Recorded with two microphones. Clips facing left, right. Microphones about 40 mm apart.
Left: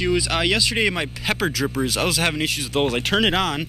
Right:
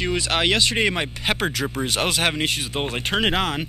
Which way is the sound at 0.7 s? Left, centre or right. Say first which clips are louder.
Even; centre.